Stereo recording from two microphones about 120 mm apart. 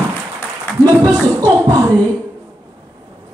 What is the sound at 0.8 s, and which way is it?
Music, 30° right (ahead or behind).